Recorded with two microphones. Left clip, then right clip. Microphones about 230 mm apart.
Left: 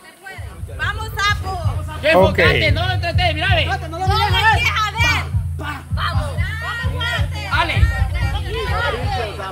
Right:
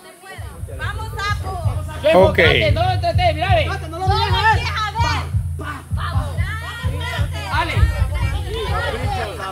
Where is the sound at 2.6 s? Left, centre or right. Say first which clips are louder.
Right 1 dB; left.